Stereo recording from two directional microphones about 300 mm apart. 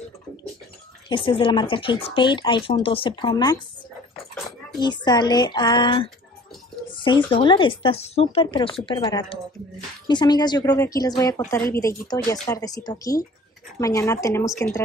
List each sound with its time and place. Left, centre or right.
1.0 s a woman's voice: centre
4.7 s a woman's voice: centre
7.1 s a woman's voice: centre